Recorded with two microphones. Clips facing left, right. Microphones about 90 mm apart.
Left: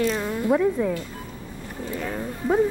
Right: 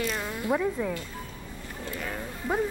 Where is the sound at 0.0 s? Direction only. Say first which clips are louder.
Left 7 dB; centre (ahead or behind).